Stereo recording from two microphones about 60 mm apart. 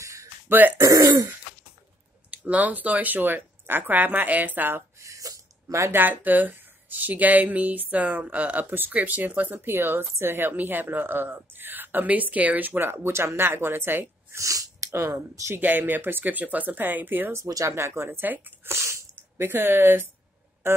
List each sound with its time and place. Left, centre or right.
0.0 s a sound: right
0.5 s speech: right
2.3 s a woman's voice: right
4.9 s a sound: right
5.9 s a woman's voice: right
14.4 s speech: right
15.5 s a woman's voice: right
17.5 s speech: right
17.7 s a woman's voice: right
18.7 s sneeze: right
19.4 s a woman's voice: right